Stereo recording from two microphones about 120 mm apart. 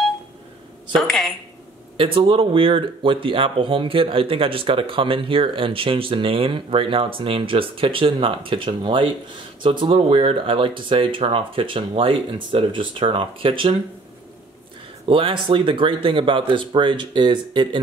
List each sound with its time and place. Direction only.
0.9 s speech: 5° left (ahead or behind)
2.0 s speech: 50° right (ahead or behind)
15.0 s speech: 45° right (ahead or behind)